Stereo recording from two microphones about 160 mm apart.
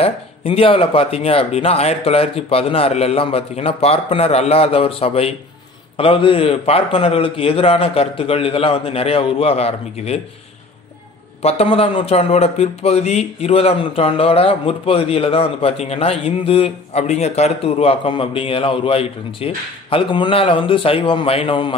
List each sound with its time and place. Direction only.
0.0 s a man's voice: 35° left (ahead or behind)
11.4 s a man's voice: 40° left (ahead or behind)